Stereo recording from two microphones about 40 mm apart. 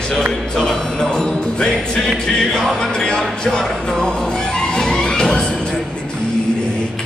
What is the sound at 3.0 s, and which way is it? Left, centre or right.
Music, centre.